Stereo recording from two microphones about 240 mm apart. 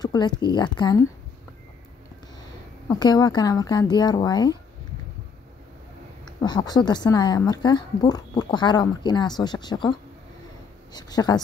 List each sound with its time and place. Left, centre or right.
0.0 s a woman's voice: centre
2.9 s a woman's voice: centre
6.4 s a woman's voice: centre